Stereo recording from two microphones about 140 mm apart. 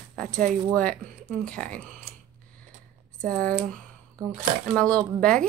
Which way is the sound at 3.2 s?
10° left (ahead or behind).